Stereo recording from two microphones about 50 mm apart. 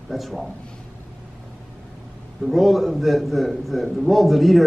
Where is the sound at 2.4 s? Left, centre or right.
Centre.